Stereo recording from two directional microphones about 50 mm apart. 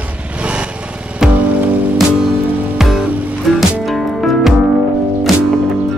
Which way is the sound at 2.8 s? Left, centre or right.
Centre.